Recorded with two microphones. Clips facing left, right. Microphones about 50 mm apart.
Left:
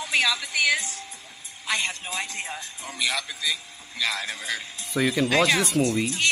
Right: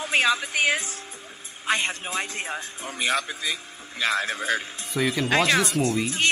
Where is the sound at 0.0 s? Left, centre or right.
Right.